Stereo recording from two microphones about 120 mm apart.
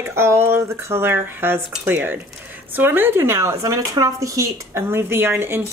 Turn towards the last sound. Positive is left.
turn(degrees=-20)  # may be behind; listen again after turning